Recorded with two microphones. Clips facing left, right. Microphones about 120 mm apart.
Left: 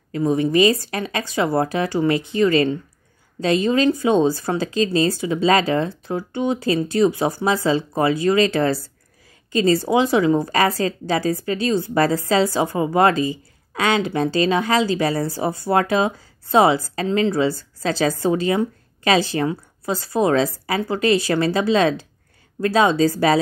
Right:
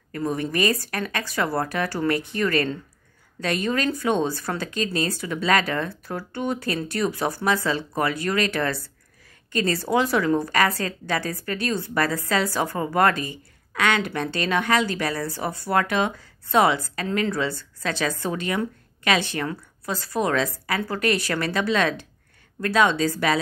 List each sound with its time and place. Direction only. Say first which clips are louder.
0.1 s a woman's voice: left 8 dB; 20° left (ahead or behind)
12.7 s speech: left 5 dB; 15° left (ahead or behind)
13.7 s speech: left 4 dB; 30° left (ahead or behind)